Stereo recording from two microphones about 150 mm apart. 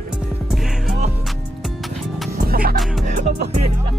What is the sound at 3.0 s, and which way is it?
Music, 55° right (ahead or behind).